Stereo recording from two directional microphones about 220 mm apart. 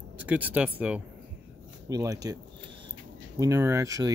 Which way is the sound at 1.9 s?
15° right (ahead or behind).